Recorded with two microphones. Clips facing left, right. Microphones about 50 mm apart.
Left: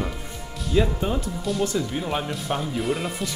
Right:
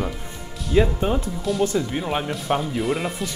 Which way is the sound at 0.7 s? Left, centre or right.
Centre.